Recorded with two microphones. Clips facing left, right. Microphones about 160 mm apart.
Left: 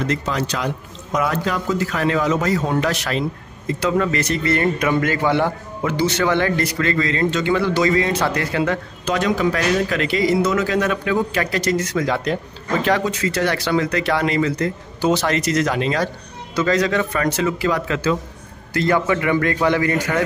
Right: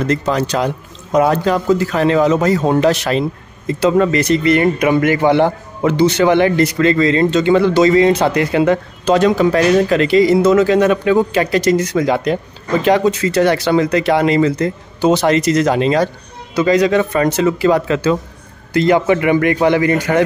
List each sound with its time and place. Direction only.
0.1 s a man's voice: 40° right (ahead or behind)
16.5 s speech: 15° right (ahead or behind)